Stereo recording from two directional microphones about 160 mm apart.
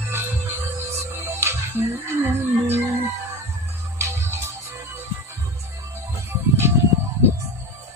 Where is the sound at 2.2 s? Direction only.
15° right (ahead or behind).